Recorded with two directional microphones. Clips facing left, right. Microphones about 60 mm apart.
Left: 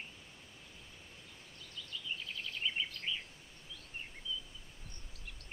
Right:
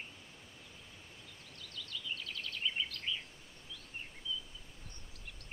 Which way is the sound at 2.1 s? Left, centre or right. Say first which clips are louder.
Left 1 dB; centre.